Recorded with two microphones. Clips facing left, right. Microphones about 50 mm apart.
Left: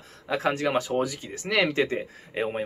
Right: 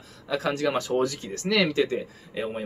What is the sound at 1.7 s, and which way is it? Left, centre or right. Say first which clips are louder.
Speech: right 1 dB; left.